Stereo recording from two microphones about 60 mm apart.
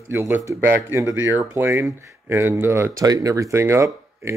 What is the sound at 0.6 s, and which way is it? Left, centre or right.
A man's voice, right.